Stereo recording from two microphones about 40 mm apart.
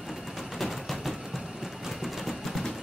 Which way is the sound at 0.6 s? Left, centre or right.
Centre.